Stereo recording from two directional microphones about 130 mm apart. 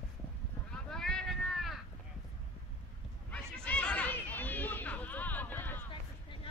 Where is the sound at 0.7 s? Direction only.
5° left (ahead or behind).